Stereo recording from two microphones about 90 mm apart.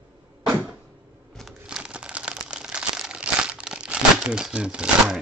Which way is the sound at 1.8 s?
10° right (ahead or behind).